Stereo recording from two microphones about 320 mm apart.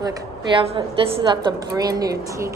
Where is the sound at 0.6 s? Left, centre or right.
Centre.